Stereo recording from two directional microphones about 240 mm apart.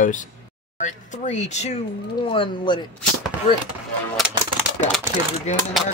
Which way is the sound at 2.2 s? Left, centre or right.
Centre.